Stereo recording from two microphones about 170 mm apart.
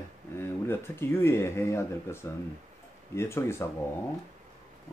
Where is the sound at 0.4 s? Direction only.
15° left (ahead or behind).